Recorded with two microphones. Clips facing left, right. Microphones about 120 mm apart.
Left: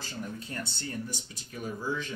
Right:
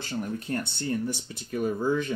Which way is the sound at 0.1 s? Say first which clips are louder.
Right 9 dB; 60° right (ahead or behind).